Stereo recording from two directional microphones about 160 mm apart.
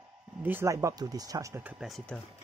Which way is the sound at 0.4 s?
15° right (ahead or behind).